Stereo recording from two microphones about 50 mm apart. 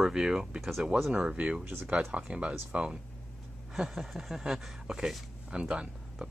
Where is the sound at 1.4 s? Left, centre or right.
Right.